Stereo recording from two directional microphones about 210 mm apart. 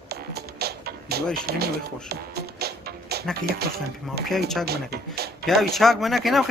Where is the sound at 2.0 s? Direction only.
50° right (ahead or behind).